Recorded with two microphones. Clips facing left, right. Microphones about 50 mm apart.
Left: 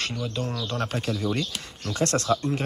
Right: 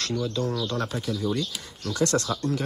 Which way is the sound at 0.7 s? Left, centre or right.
Left.